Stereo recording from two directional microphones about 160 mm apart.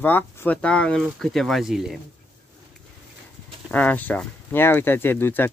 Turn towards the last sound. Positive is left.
turn(degrees=15)  # may be behind; listen again after turning